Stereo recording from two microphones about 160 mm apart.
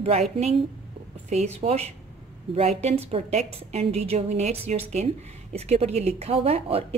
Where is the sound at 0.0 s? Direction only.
40° right (ahead or behind).